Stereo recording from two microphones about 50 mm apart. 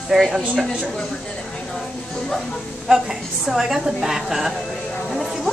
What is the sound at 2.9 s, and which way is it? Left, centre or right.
Speech, right.